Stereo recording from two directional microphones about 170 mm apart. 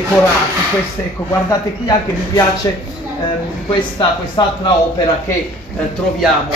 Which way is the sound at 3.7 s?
30° left (ahead or behind).